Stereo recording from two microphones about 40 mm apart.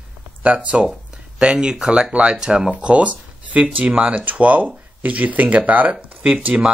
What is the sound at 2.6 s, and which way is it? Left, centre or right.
Speech, right.